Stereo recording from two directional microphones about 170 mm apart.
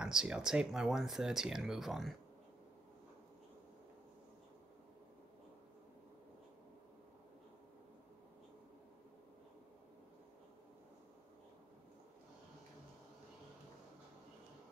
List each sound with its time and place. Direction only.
0.0 s speech: 5° right (ahead or behind)